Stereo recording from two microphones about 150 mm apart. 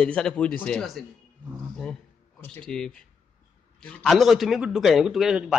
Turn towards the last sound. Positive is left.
turn(degrees=-5)  # may be behind; listen again after turning